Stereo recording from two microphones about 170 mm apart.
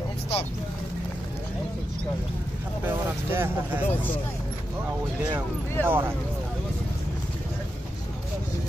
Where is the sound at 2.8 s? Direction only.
10° right (ahead or behind).